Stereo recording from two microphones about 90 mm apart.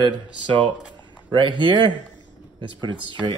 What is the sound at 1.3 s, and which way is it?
Speech, 70° right (ahead or behind).